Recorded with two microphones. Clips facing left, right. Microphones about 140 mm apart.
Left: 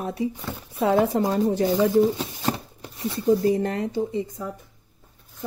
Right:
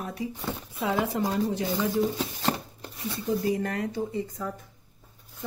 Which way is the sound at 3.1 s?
30° left (ahead or behind).